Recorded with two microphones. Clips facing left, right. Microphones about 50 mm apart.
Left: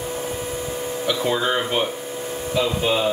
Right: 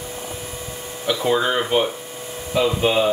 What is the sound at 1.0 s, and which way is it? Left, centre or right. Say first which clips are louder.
Speech: right 3 dB; centre.